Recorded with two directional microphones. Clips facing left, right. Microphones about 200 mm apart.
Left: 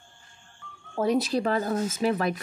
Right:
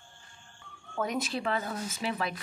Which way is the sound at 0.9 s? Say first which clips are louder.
Left 8 dB; 35° left (ahead or behind).